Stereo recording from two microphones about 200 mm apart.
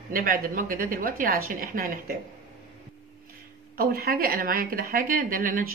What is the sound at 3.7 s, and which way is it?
A woman's voice, 50° right (ahead or behind).